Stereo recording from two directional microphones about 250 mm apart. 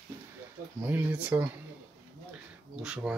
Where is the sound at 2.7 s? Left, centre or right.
Centre.